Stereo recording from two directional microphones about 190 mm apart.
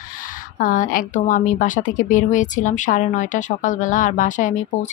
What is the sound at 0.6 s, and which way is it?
Speech, 45° left (ahead or behind).